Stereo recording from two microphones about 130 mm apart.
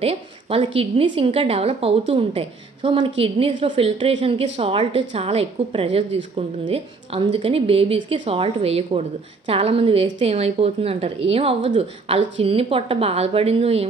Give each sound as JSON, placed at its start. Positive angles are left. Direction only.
{"t": 0.0, "sound": "a woman's voice", "side_deg": -50}